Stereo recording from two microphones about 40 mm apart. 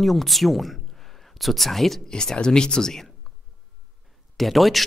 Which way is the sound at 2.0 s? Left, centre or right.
Centre.